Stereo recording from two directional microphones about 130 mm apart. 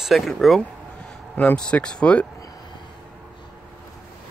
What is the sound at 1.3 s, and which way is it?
Speech, 10° left (ahead or behind).